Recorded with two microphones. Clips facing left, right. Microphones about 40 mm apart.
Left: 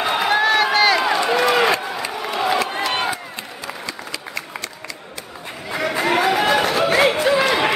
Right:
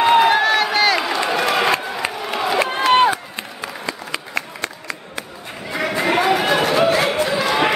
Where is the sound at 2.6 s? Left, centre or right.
Right.